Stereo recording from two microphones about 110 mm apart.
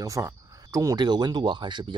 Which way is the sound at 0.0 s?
30° right (ahead or behind).